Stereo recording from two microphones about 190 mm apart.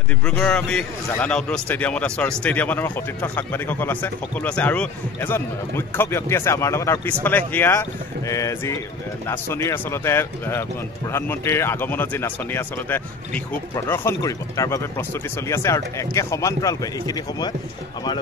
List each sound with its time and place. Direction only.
0.2 s a man's voice: 5° left (ahead or behind); by 17.6 s 20° left (ahead or behind)